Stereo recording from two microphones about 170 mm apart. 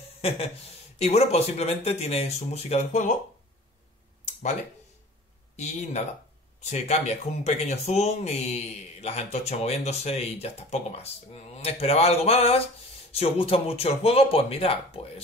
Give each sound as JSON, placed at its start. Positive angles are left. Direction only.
{"t": 0.2, "sound": "speech", "side_deg": 35}
{"t": 4.2, "sound": "a sound", "side_deg": 45}
{"t": 5.6, "sound": "speech", "side_deg": 40}